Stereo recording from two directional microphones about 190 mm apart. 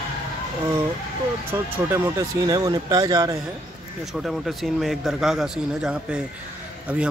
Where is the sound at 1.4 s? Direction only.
10° right (ahead or behind).